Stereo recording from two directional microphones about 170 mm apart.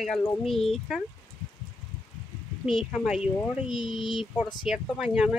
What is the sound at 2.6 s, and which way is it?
Speech, 5° right (ahead or behind).